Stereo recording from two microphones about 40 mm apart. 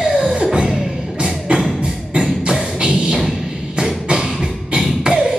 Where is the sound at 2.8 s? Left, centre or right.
Right.